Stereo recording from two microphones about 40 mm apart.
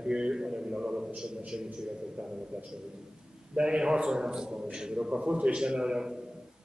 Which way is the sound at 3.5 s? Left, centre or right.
Right.